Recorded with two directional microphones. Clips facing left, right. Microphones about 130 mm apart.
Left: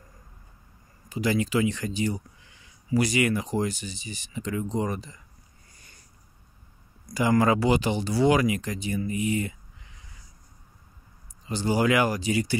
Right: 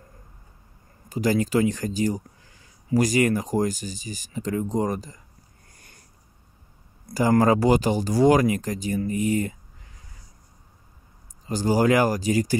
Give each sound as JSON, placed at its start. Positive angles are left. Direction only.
{"t": 1.0, "sound": "speech", "side_deg": -40}
{"t": 7.2, "sound": "speech", "side_deg": -40}
{"t": 11.4, "sound": "speech", "side_deg": -40}